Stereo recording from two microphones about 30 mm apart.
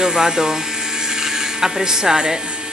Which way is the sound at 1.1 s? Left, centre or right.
Centre.